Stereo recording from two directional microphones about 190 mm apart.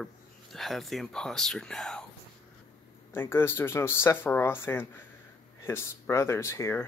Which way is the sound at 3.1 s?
15° left (ahead or behind).